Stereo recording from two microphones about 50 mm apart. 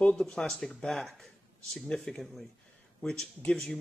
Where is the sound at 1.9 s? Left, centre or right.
Left.